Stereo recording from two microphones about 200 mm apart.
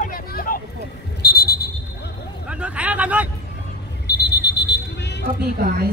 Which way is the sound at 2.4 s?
5° right (ahead or behind).